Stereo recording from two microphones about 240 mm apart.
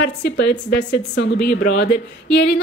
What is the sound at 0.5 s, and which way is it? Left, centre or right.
A woman's voice, left.